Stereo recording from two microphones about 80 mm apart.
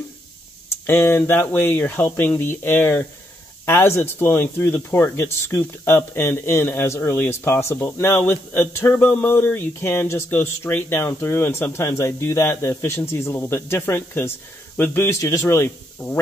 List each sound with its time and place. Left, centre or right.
0.8 s speech: left